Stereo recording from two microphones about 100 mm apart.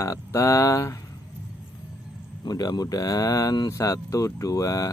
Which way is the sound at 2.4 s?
40° left (ahead or behind).